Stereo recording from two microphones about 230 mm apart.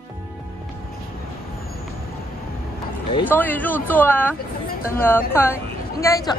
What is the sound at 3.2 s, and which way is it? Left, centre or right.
A woman's voice, centre.